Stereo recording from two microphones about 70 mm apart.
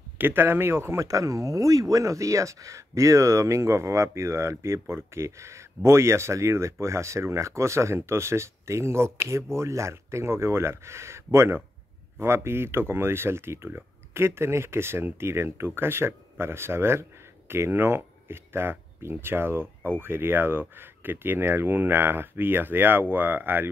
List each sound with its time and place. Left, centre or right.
0.2 s speech: right